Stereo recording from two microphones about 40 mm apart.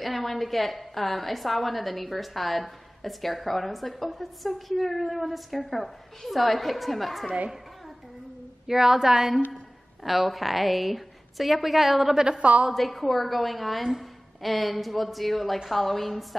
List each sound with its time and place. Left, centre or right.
0.0 s a woman's voice: centre
8.6 s a woman's voice: centre
12.4 s a woman's voice: right
12.7 s a woman's voice: centre